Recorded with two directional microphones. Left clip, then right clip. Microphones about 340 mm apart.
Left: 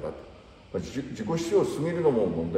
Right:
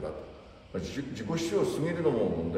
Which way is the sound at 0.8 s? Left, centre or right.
Centre.